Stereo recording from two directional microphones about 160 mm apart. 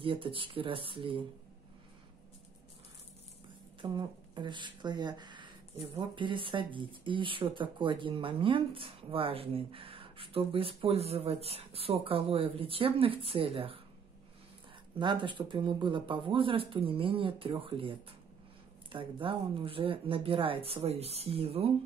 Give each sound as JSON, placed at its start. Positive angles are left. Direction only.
{"t": 0.0, "sound": "speech", "side_deg": -35}
{"t": 3.8, "sound": "speech", "side_deg": -30}
{"t": 15.0, "sound": "speech", "side_deg": -30}